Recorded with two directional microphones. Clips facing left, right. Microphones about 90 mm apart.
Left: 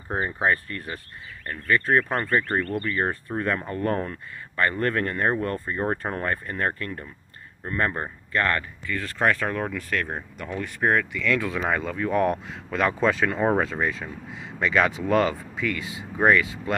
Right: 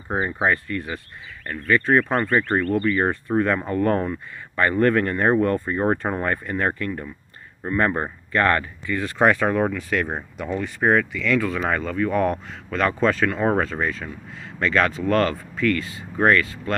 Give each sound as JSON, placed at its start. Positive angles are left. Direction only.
{"t": 0.1, "sound": "speech", "side_deg": -20}
{"t": 8.9, "sound": "speech", "side_deg": -15}